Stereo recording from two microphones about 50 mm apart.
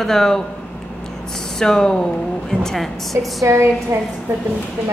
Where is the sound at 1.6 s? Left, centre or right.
Centre.